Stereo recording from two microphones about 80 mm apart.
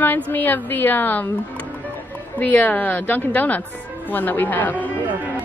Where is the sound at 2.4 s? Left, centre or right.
Left.